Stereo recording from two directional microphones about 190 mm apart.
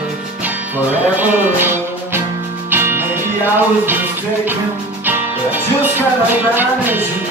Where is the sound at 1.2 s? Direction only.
10° right (ahead or behind).